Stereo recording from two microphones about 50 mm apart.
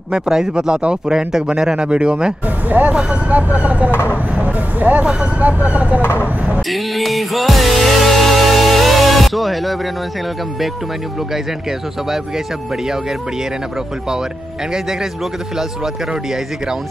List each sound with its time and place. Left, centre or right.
0.1 s speech: centre
2.7 s speech: right
6.7 s music: centre